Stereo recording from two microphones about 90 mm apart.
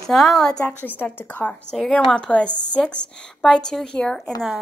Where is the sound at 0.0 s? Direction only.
5° left (ahead or behind).